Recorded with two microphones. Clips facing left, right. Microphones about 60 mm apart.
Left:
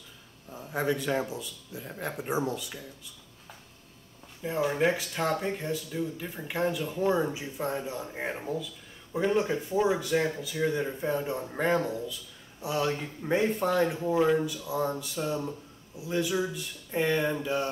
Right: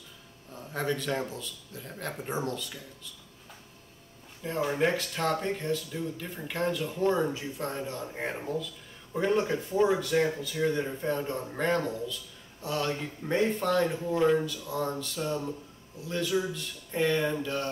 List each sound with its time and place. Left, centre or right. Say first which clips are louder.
0.5 s speech: left 2 dB; centre
4.4 s speech: left 1 dB; centre